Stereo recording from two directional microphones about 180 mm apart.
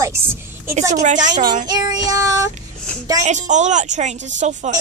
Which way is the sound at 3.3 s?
40° right (ahead or behind).